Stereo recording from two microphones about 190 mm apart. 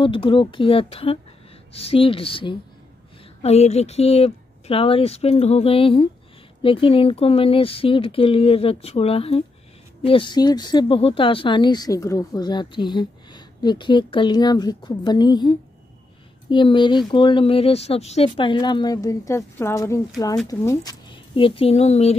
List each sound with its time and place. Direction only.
0.0 s a woman's voice: 25° left (ahead or behind)